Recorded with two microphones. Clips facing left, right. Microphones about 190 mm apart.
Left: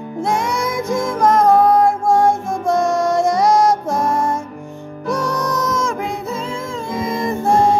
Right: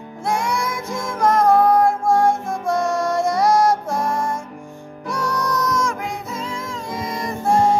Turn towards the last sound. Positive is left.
turn(degrees=25)  # may be behind; listen again after turning